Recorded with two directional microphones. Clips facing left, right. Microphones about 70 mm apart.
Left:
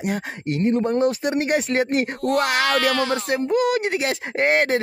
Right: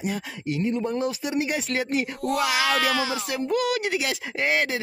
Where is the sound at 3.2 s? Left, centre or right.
Left.